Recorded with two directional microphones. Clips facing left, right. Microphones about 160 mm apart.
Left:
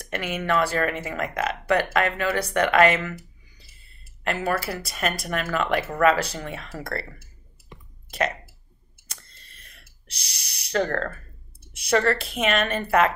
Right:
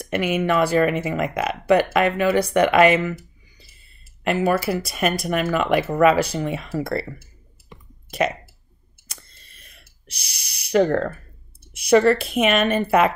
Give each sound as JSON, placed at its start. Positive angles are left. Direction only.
{"t": 0.0, "sound": "speech", "side_deg": -15}
{"t": 8.2, "sound": "speech", "side_deg": -15}
{"t": 9.1, "sound": "a sound", "side_deg": -10}
{"t": 10.7, "sound": "speech", "side_deg": -15}